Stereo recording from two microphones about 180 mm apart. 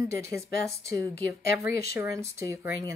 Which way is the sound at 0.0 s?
15° right (ahead or behind).